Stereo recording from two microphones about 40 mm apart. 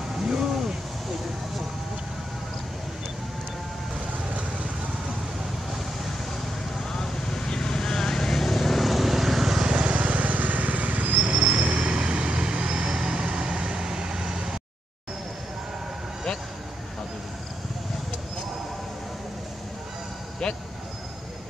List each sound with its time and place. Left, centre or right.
0.3 s a sound: centre
6.8 s vehicle: centre
9.7 s vehicle: right